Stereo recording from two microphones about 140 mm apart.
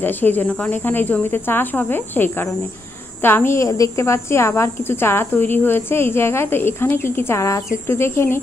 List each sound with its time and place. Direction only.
0.0 s speech: 10° left (ahead or behind)